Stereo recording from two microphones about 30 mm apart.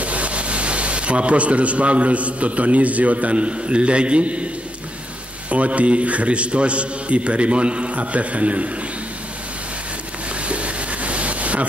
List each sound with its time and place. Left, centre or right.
0.0 s a man's voice: right
5.5 s a man's voice: right
10.4 s a sound: right